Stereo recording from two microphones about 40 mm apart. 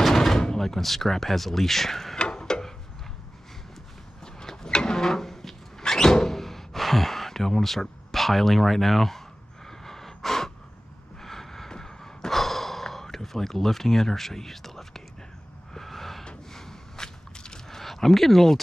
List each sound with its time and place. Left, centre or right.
0.0 s speech: centre
2.1 s a sound: left
4.4 s a sound: centre
5.8 s thunk: centre
9.7 s gasp: centre
16.5 s walk: centre